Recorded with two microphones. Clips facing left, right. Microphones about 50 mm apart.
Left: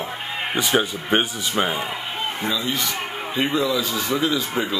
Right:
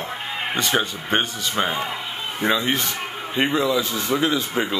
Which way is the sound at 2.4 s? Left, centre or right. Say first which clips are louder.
Right 6 dB; right.